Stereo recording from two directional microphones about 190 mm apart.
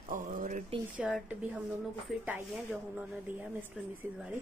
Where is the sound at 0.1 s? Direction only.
45° right (ahead or behind).